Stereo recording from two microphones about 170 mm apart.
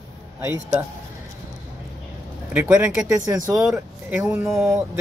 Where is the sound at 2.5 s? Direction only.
10° right (ahead or behind).